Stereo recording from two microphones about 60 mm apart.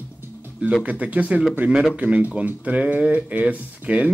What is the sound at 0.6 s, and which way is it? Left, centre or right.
Speech, centre.